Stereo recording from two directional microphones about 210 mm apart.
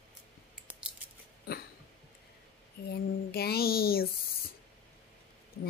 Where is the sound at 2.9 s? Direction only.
50° left (ahead or behind).